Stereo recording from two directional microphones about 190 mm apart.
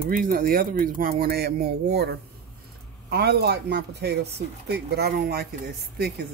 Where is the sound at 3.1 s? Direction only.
60° right (ahead or behind).